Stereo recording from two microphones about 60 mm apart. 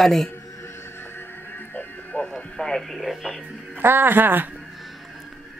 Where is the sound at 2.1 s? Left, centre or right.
Centre.